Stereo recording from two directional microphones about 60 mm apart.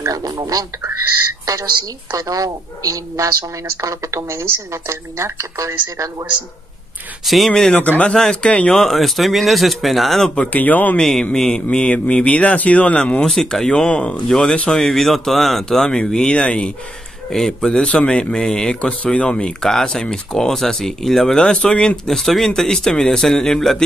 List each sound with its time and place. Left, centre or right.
0.1 s speech: right
1.4 s a sound: right
2.1 s speech: right
3.8 s a woman's voice: right
7.2 s speech: centre
8.0 s speech: centre
10.3 s speech: left
11.0 s speech: centre